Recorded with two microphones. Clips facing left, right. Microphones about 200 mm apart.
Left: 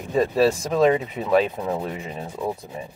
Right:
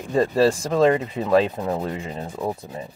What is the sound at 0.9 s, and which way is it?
Speech, 15° left (ahead or behind).